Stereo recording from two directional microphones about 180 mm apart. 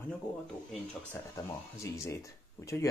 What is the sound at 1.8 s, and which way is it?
Speech, 15° left (ahead or behind).